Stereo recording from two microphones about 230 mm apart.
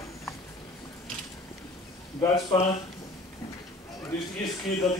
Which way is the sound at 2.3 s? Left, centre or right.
Centre.